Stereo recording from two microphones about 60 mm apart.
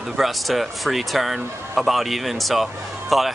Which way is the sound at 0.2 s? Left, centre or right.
Centre.